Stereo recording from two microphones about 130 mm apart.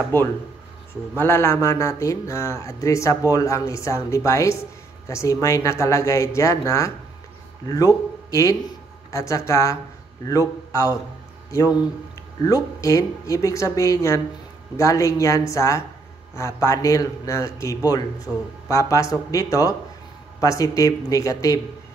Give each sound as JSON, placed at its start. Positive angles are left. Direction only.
{"t": 0.1, "sound": "speech", "side_deg": 15}
{"t": 12.4, "sound": "speech", "side_deg": 25}